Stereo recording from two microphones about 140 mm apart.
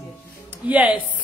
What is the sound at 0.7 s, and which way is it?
Speech, 10° right (ahead or behind).